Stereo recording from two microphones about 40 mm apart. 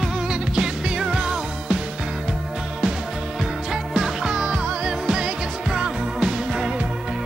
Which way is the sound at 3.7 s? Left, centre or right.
Centre.